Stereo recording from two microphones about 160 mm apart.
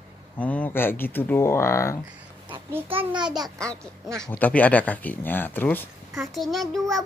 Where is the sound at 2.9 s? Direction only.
30° right (ahead or behind).